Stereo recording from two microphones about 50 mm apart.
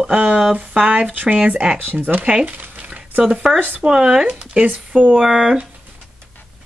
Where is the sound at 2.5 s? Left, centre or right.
Right.